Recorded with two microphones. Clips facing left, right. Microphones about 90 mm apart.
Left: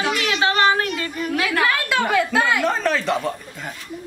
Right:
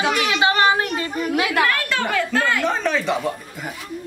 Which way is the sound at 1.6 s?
10° left (ahead or behind).